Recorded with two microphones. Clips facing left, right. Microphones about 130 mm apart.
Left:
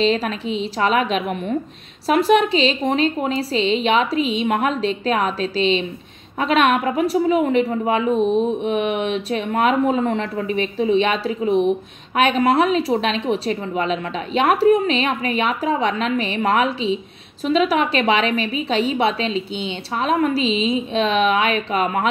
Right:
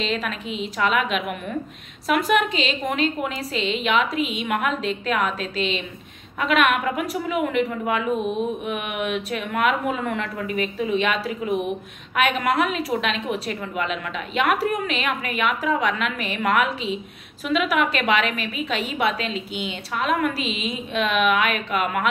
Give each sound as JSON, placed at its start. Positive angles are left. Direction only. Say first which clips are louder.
{"t": 0.0, "sound": "a woman's voice", "louder": "left 7 dB", "side_deg": 35}